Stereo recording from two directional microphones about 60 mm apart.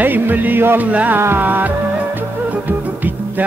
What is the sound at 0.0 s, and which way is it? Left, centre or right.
Music, right.